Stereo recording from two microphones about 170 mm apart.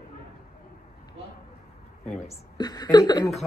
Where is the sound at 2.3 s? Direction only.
25° left (ahead or behind).